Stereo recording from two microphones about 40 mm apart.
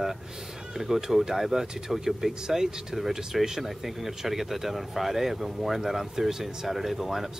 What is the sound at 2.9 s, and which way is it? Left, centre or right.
Speech, centre.